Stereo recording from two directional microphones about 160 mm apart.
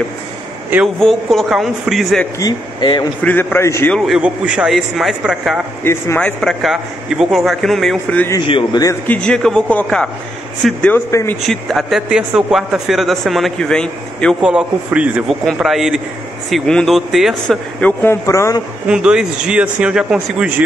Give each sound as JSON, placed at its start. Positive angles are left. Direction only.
{"t": 1.0, "sound": "a man's voice", "side_deg": 0}
{"t": 2.3, "sound": "speech", "side_deg": 25}
{"t": 3.3, "sound": "a man's voice", "side_deg": 10}
{"t": 3.9, "sound": "a man's voice", "side_deg": 0}
{"t": 5.9, "sound": "a man's voice", "side_deg": 10}
{"t": 8.4, "sound": "a man's voice", "side_deg": 30}
{"t": 8.8, "sound": "a man's voice", "side_deg": 10}
{"t": 11.1, "sound": "speech", "side_deg": 20}
{"t": 11.4, "sound": "a man's voice", "side_deg": 0}
{"t": 14.5, "sound": "a man's voice", "side_deg": -10}
{"t": 18.9, "sound": "a man's voice", "side_deg": -5}